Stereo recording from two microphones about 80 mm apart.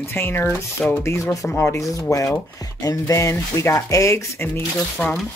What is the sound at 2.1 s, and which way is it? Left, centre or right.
Speech, left.